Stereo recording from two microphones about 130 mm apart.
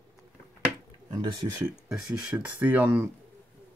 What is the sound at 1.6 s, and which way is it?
Speech, 10° right (ahead or behind).